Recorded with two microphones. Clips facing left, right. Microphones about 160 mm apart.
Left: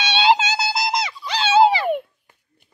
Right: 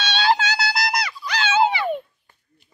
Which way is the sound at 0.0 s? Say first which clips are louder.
Left 3 dB; 20° left (ahead or behind).